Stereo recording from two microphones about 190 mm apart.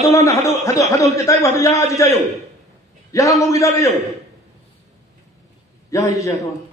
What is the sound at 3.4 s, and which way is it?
Speech, 15° left (ahead or behind).